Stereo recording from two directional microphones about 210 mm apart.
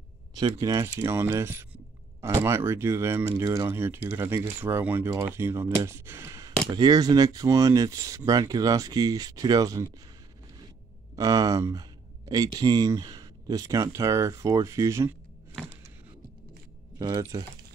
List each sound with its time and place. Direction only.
0.4 s speech: 15° right (ahead or behind)
11.1 s speech: 15° right (ahead or behind)
17.0 s speech: 15° right (ahead or behind)